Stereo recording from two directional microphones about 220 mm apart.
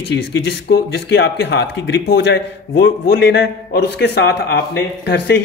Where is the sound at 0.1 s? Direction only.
50° left (ahead or behind).